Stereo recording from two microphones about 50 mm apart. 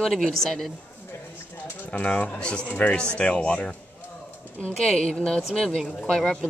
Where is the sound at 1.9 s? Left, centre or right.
Left.